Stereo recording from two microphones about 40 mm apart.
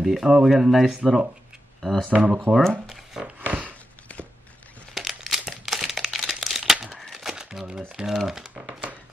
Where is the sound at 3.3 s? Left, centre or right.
Right.